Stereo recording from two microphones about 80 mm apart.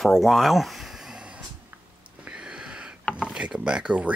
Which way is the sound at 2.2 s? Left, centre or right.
Centre.